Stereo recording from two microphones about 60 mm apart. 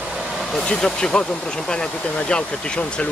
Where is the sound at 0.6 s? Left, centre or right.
Centre.